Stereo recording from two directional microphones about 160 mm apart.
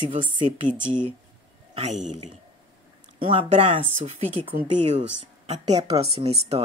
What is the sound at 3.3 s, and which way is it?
Speech, 35° right (ahead or behind).